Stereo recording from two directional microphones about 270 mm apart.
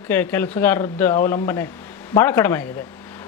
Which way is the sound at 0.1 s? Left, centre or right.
Centre.